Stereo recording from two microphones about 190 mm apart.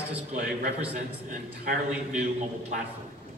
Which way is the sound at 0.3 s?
40° right (ahead or behind).